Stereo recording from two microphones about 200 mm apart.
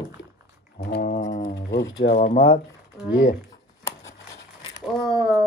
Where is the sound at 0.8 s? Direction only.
50° left (ahead or behind).